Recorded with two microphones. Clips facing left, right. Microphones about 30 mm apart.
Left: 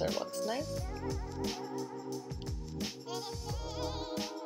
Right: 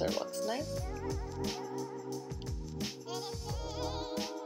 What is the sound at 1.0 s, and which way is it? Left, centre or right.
Music, centre.